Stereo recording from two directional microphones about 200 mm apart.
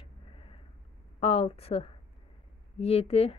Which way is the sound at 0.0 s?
30° left (ahead or behind).